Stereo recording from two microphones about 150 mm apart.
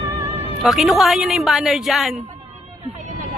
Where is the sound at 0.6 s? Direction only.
Centre (ahead or behind).